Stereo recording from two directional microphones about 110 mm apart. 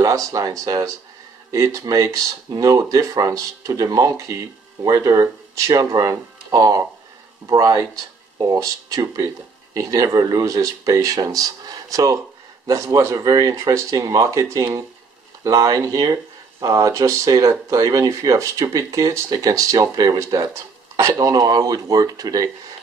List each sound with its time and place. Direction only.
0.0 s speech: 30° right (ahead or behind)